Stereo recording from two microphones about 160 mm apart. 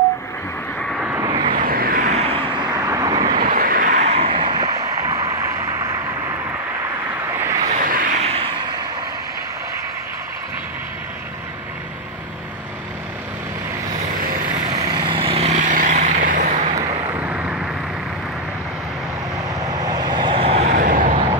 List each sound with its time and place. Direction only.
0.7 s vehicle: centre (ahead or behind)
1.2 s vehicle: 25° right (ahead or behind)
1.5 s vehicle: 60° right (ahead or behind)
2.1 s vehicle: 35° right (ahead or behind)
3.3 s vehicle: 60° right (ahead or behind); by 5.9 s 20° right (ahead or behind)
7.2 s vehicle: 15° right (ahead or behind)
7.6 s vehicle: 60° right (ahead or behind)
8.2 s vehicle: 40° right (ahead or behind)
14.1 s vehicle: 65° right (ahead or behind)
14.7 s vehicle: 25° right (ahead or behind); by 16.8 s 55° right (ahead or behind)
17.1 s vehicle: 10° right (ahead or behind)
19.6 s vehicle: 25° right (ahead or behind); by 21.2 s 55° right (ahead or behind)